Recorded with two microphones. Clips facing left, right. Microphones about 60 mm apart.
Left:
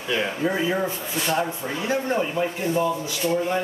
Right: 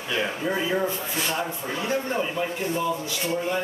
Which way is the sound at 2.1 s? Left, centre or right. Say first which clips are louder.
Left 2 dB; centre.